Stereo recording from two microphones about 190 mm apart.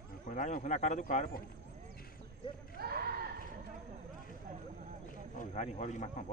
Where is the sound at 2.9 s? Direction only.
55° right (ahead or behind).